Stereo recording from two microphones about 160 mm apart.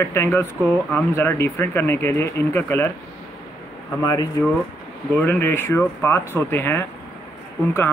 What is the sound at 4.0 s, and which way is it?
Speech, 25° left (ahead or behind).